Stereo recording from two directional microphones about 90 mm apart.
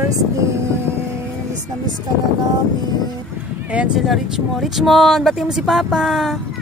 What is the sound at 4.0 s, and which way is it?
Speech, 5° right (ahead or behind).